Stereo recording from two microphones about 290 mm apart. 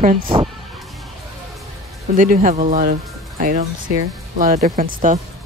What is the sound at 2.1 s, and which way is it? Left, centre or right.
Speech, right.